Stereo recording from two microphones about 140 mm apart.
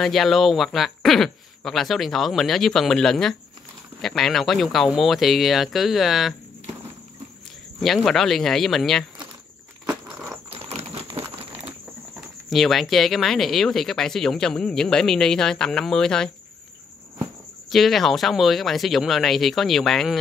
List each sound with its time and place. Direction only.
0.0 s speech: centre (ahead or behind)
7.8 s speech: centre (ahead or behind)
9.8 s a sound: 10° right (ahead or behind)
10.5 s a sound: 45° right (ahead or behind)
12.4 s speech: centre (ahead or behind)
17.6 s speech: centre (ahead or behind)